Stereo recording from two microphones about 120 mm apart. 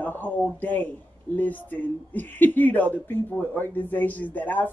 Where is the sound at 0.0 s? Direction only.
15° left (ahead or behind).